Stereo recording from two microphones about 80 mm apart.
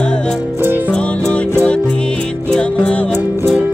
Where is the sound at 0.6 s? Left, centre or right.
Right.